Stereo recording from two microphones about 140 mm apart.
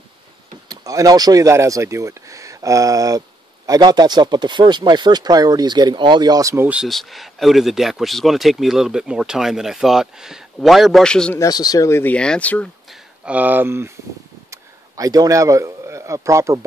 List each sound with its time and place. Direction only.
0.7 s speech: 25° right (ahead or behind)
6.8 s speech: centre (ahead or behind)
11.3 s speech: 25° left (ahead or behind); by 12.6 s 10° left (ahead or behind)
12.9 s a man's voice: 10° right (ahead or behind)